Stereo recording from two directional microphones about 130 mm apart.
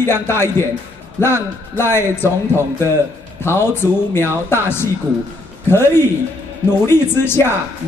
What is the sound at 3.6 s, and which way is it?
Speech, 15° left (ahead or behind).